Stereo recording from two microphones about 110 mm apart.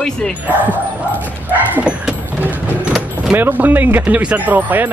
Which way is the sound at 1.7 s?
15° right (ahead or behind).